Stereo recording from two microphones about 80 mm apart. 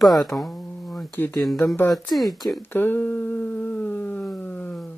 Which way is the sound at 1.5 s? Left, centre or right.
Left.